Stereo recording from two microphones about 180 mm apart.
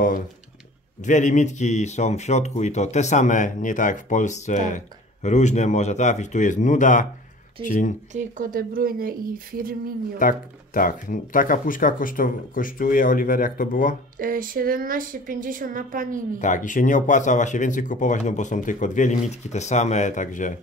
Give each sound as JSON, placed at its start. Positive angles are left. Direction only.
{"t": 1.0, "sound": "speech", "side_deg": 45}
{"t": 8.1, "sound": "speech", "side_deg": -45}
{"t": 10.1, "sound": "speech", "side_deg": 50}
{"t": 14.1, "sound": "speech", "side_deg": -50}
{"t": 16.3, "sound": "speech", "side_deg": 45}